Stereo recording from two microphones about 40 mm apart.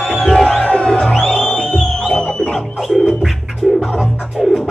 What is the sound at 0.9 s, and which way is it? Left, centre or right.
Music, centre.